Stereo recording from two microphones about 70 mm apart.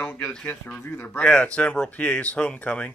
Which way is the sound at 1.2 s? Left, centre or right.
Centre.